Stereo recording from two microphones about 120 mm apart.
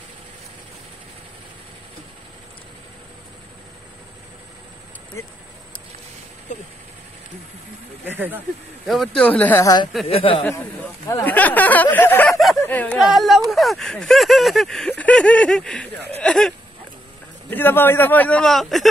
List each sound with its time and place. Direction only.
8.0 s speech: 15° right (ahead or behind)
8.8 s speech: centre (ahead or behind)
9.6 s speech: 30° left (ahead or behind)
10.0 s speech: 55° left (ahead or behind)
11.2 s speech: 15° left (ahead or behind)
12.3 s a sound: centre (ahead or behind)
12.6 s speech: 15° left (ahead or behind)
13.0 s speech: centre (ahead or behind)
17.5 s speech: 15° left (ahead or behind)